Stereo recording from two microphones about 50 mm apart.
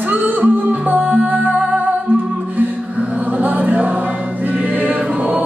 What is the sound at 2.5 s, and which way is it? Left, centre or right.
Music, right.